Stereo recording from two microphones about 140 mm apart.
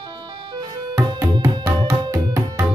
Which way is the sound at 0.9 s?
20° right (ahead or behind).